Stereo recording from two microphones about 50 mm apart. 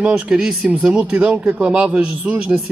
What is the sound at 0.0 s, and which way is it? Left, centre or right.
Speech, centre.